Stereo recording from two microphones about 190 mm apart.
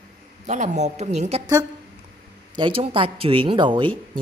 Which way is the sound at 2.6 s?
30° right (ahead or behind).